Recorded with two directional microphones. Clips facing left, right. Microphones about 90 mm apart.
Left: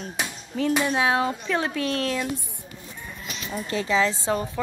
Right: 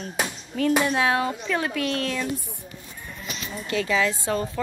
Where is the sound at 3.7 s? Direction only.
25° left (ahead or behind).